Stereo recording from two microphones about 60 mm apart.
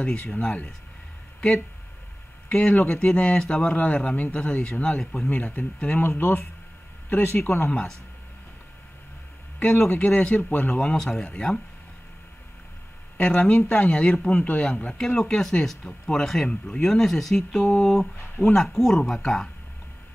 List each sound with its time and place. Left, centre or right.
0.0 s a man's voice: left
2.9 s a man's voice: centre
5.3 s a man's voice: left
6.0 s speech: left
9.6 s speech: centre
9.8 s a man's voice: left
10.8 s speech: centre
13.2 s a man's voice: left
15.0 s speech: centre